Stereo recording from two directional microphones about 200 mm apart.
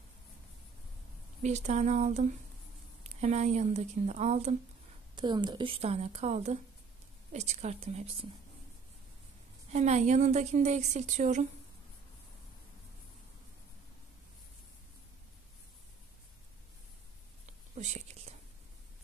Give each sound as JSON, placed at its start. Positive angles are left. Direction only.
{"t": 1.4, "sound": "a woman's voice", "side_deg": -35}
{"t": 5.1, "sound": "a woman's voice", "side_deg": -20}
{"t": 9.7, "sound": "a woman's voice", "side_deg": -35}
{"t": 17.7, "sound": "whispering", "side_deg": -35}